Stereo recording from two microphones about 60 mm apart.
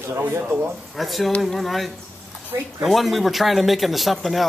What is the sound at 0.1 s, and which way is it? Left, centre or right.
Speech, right.